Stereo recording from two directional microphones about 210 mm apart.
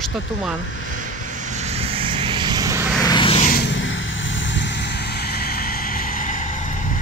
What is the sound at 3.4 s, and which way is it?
Vehicle, 50° left (ahead or behind).